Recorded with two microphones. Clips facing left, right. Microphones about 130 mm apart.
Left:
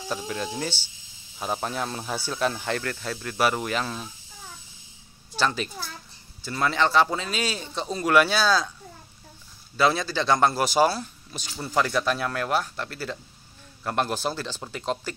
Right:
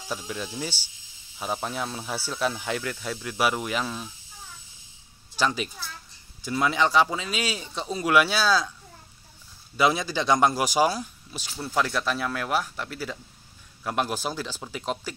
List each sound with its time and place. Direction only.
0.1 s speech: 5° right (ahead or behind)
5.4 s speech: 10° right (ahead or behind)
9.8 s speech: 15° right (ahead or behind)
11.5 s speech: centre (ahead or behind)